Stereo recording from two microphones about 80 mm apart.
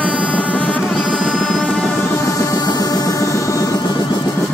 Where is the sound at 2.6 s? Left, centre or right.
Left.